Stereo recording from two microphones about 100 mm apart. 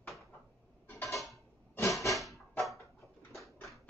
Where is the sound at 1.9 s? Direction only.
Centre (ahead or behind).